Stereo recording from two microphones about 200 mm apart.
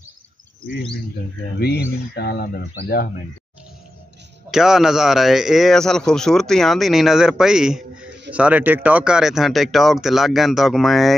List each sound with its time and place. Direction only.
1.6 s speech: 55° left (ahead or behind)
4.5 s a man's voice: centre (ahead or behind)